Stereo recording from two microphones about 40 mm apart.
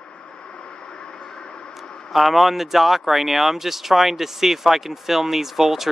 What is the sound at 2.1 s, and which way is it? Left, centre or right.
Speech, centre.